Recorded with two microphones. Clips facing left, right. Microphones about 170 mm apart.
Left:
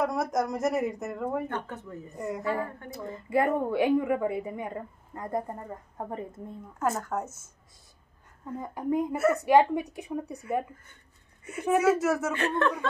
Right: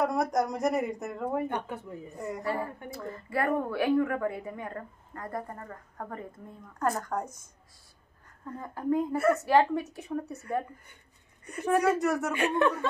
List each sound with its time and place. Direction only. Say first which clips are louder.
0.0 s a woman's voice: right 1 dB; centre (ahead or behind)
1.5 s speech: right 1 dB; 15° right (ahead or behind)
2.1 s a woman's voice: left 3 dB; centre (ahead or behind)
2.9 s a woman's voice: left 5 dB; 20° left (ahead or behind)
6.8 s a woman's voice: left 1 dB; 5° left (ahead or behind)
8.5 s a woman's voice: even; 15° left (ahead or behind)
9.1 s a woman's voice: even; 5° left (ahead or behind)
9.4 s a woman's voice: left 3 dB; 15° left (ahead or behind)
11.4 s a woman's voice: left 2 dB; 5° left (ahead or behind)
12.3 s speech: right 1 dB; 15° right (ahead or behind)